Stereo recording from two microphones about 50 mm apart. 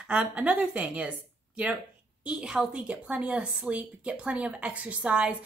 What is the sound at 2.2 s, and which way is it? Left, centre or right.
Speech, centre.